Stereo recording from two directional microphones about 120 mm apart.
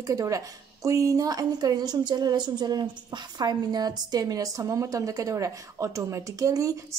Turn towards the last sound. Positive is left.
turn(degrees=-30)  # may be behind; listen again after turning